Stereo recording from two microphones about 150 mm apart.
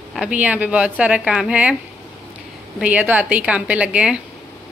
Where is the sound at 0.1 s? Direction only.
5° right (ahead or behind).